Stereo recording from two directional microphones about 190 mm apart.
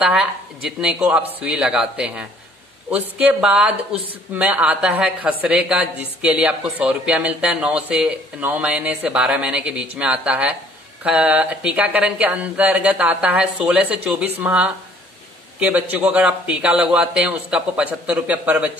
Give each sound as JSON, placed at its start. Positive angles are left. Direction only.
{"t": 0.0, "sound": "a woman's voice", "side_deg": -5}